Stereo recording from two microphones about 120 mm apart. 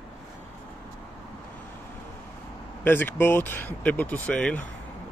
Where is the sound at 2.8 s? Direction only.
15° left (ahead or behind).